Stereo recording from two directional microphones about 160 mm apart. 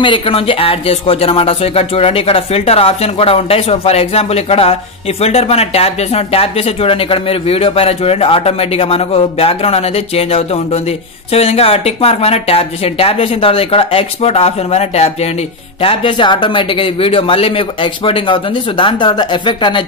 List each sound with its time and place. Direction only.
0.0 s speech: 35° left (ahead or behind)